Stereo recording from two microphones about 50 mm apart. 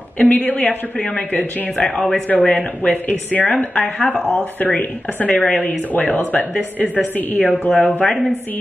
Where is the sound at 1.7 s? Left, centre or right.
Centre.